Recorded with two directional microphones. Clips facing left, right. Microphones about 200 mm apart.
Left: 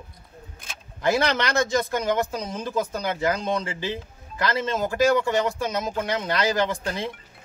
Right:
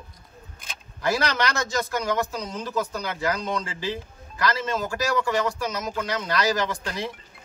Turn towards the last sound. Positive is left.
turn(degrees=25)  # may be behind; listen again after turning